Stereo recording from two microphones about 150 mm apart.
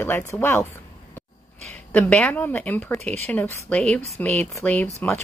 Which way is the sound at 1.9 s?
10° left (ahead or behind).